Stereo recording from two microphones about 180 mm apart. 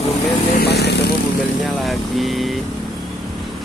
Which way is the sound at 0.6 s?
65° left (ahead or behind).